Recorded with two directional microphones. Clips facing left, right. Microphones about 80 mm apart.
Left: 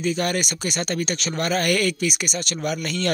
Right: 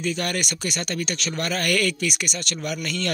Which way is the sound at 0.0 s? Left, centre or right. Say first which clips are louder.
Left 3 dB; centre.